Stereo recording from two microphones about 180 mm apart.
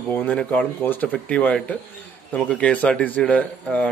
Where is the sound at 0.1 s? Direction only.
10° left (ahead or behind).